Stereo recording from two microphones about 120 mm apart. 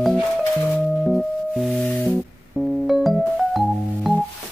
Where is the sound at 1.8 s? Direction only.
15° left (ahead or behind).